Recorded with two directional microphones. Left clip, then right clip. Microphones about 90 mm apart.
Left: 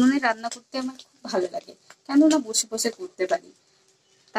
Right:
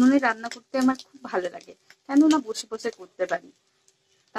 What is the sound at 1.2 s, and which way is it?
Speech, 40° left (ahead or behind).